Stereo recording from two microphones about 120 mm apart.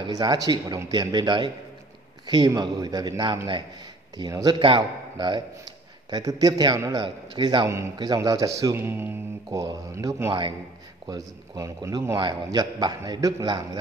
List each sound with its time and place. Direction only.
0.0 s a man's voice: 35° right (ahead or behind)
12.2 s a man's voice: 35° right (ahead or behind)